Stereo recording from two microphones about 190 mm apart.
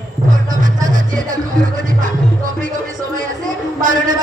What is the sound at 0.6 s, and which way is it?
Music, 45° right (ahead or behind).